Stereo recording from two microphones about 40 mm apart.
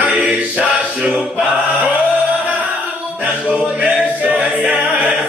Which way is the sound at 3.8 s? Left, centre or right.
Right.